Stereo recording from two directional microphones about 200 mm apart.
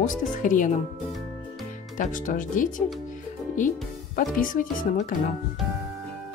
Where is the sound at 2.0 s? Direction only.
40° left (ahead or behind).